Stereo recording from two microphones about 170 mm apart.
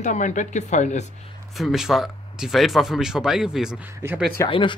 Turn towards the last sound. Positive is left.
turn(degrees=30)  # may be behind; listen again after turning